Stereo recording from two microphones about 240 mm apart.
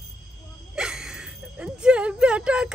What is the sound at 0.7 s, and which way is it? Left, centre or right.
Speech, centre.